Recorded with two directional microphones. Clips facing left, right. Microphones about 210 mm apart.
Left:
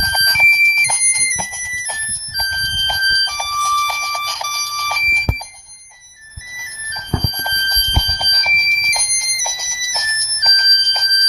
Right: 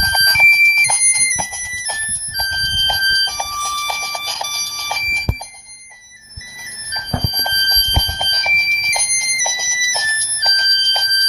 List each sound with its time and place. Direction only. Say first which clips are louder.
0.1 s music: right 1 dB; 45° right (ahead or behind)
2.3 s alarm: right 1 dB; 25° right (ahead or behind)
7.3 s fire alarm: right 1 dB; 15° right (ahead or behind)